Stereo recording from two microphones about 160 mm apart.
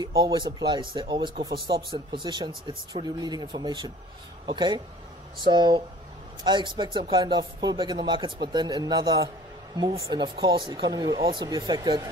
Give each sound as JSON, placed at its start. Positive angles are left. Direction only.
{"t": 0.0, "sound": "speech", "side_deg": -25}